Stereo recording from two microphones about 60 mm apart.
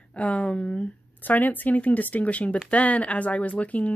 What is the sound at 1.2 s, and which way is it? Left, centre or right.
Speech, left.